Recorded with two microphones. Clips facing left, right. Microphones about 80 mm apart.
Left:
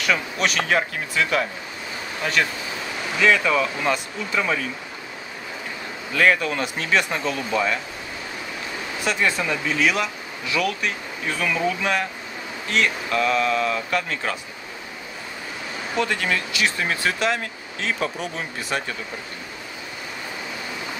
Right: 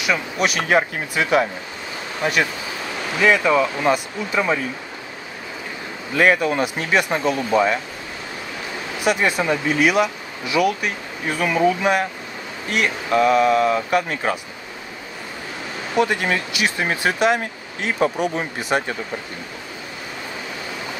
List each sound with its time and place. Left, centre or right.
0.0 s speech: centre
3.2 s speech: centre
6.1 s speech: centre
9.0 s speech: centre
15.9 s speech: centre